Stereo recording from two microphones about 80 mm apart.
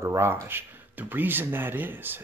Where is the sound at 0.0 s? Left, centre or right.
Right.